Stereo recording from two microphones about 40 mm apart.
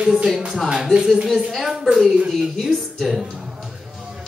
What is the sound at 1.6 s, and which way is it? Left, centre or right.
A man's voice, centre.